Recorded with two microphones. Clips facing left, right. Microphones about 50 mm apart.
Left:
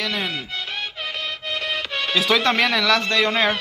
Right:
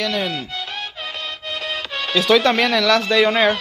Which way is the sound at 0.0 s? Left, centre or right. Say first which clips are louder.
Right 3 dB; centre.